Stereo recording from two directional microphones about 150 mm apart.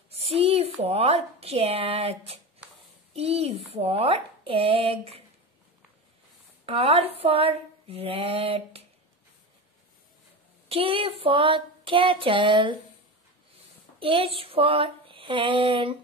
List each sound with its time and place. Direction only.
0.2 s a woman's voice: 40° right (ahead or behind)
6.6 s speech: 40° right (ahead or behind)
10.7 s speech: 40° right (ahead or behind)
13.9 s speech: 35° right (ahead or behind)